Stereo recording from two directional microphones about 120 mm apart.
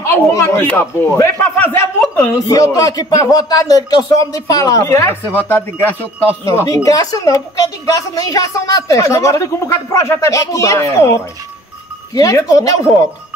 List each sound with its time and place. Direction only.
0.0 s speech: 25° left (ahead or behind)